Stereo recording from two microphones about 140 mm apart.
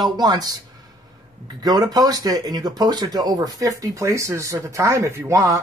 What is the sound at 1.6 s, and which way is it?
Speech, 25° right (ahead or behind).